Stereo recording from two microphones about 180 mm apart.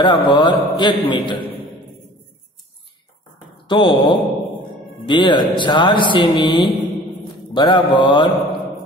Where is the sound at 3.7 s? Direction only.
25° left (ahead or behind).